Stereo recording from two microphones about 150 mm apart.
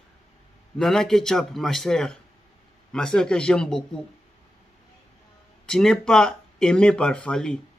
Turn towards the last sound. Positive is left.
turn(degrees=5)  # may be behind; listen again after turning